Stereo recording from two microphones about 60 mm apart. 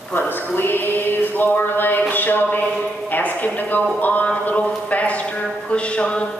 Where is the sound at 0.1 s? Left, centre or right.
Left.